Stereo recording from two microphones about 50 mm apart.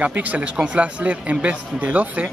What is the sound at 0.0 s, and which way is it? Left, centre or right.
Speech, right.